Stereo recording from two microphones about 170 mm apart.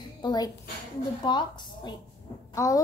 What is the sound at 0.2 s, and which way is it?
Speech, 25° left (ahead or behind).